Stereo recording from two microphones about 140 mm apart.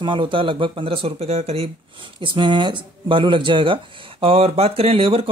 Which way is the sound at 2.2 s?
35° right (ahead or behind).